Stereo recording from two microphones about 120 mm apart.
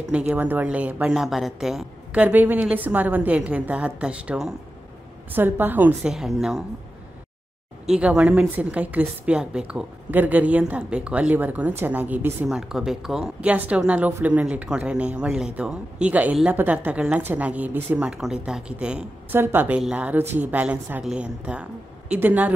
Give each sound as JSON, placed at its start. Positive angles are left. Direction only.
{"t": 0.1, "sound": "a woman's voice", "side_deg": -10}
{"t": 1.2, "sound": "a woman's voice", "side_deg": 0}
{"t": 6.1, "sound": "a woman's voice", "side_deg": -5}
{"t": 7.8, "sound": "a woman's voice", "side_deg": -5}
{"t": 12.4, "sound": "a woman's voice", "side_deg": -5}